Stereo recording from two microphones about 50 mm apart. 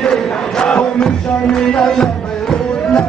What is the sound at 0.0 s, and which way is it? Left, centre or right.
Music, centre.